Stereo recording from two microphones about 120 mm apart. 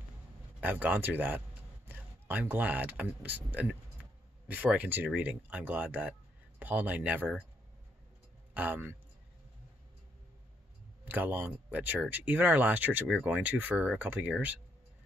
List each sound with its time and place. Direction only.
0.6 s speech: 15° right (ahead or behind)
8.5 s speech: 15° right (ahead or behind)
11.1 s speech: 15° right (ahead or behind)